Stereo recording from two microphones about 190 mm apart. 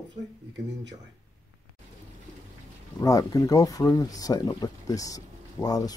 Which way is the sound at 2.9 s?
20° left (ahead or behind).